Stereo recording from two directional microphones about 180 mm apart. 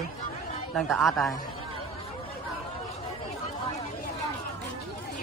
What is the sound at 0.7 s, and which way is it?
Speech, centre (ahead or behind).